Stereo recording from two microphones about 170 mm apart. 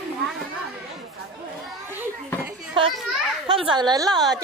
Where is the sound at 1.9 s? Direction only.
10° right (ahead or behind).